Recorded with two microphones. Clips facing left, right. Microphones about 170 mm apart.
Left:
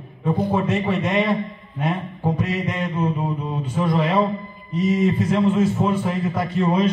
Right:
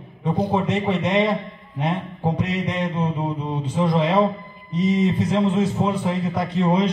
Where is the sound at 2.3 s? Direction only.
20° right (ahead or behind).